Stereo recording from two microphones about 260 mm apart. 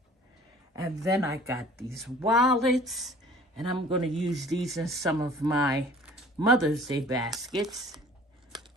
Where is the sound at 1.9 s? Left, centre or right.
Centre.